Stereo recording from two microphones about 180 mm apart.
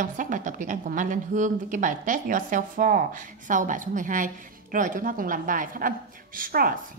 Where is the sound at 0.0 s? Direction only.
45° right (ahead or behind).